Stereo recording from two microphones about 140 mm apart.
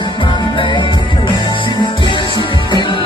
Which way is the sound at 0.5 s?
35° left (ahead or behind).